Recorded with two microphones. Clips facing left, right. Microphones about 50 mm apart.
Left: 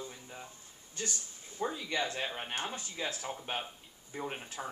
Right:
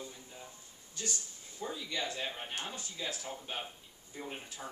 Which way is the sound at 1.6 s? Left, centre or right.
Left.